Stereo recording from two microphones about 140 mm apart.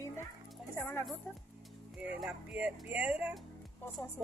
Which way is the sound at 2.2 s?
10° right (ahead or behind).